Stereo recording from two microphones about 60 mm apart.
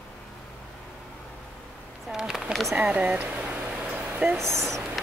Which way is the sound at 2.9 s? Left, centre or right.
Right.